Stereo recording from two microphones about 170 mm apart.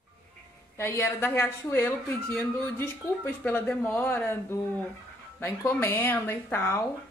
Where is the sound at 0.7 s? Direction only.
15° left (ahead or behind).